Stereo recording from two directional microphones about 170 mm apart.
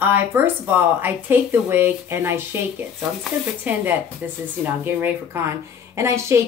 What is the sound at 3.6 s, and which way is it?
Speech, 10° right (ahead or behind).